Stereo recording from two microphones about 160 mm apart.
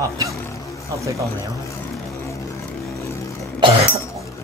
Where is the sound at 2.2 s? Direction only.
20° left (ahead or behind).